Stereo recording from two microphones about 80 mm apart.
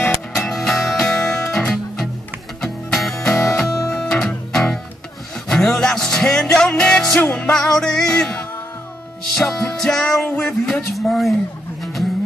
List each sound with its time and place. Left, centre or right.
0.4 s music: centre
2.6 s music: centre
7.2 s music: centre
7.5 s music: centre
9.3 s speech: centre
11.8 s a sound: centre